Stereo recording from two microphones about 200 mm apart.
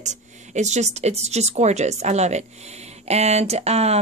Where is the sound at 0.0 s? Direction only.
35° right (ahead or behind).